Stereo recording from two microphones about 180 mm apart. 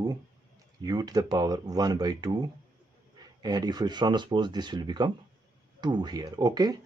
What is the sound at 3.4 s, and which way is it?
Speech, 20° right (ahead or behind).